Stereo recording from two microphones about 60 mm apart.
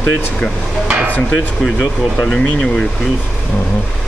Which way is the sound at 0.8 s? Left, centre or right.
Right.